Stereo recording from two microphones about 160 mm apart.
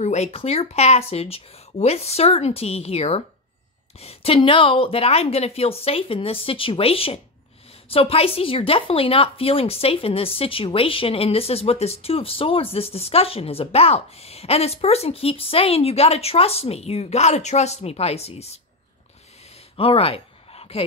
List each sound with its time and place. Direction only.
0.0 s a woman's voice: 45° left (ahead or behind)
19.8 s speech: 35° left (ahead or behind)